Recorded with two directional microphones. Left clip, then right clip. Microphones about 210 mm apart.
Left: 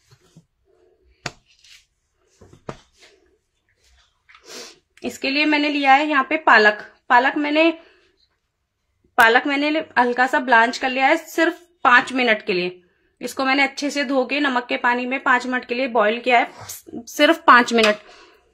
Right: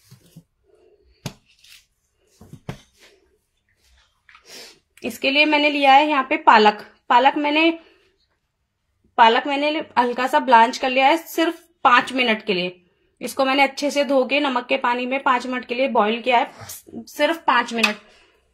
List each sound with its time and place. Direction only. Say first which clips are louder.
4.5 s a sound: left 4 dB; 30° left (ahead or behind)
5.2 s a woman's voice: right 3 dB; 5° left (ahead or behind)
9.1 s a woman's voice: even; 10° left (ahead or behind); by 17.7 s 30° left (ahead or behind)